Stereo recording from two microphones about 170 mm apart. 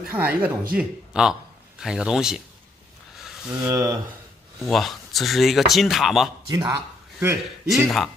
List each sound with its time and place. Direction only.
0.0 s speech: 10° right (ahead or behind)
3.2 s a sound: centre (ahead or behind)
3.6 s speech: 15° right (ahead or behind)
4.6 s speech: centre (ahead or behind)
6.5 s speech: 25° right (ahead or behind)
7.2 s speech: 5° right (ahead or behind)